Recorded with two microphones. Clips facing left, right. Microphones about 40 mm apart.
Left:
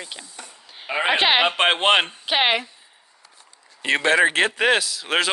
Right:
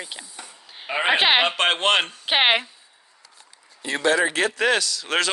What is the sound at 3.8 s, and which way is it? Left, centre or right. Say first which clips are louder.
Speech: left 3 dB; left.